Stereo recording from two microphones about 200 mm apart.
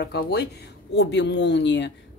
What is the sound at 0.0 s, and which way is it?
Speech, 55° left (ahead or behind).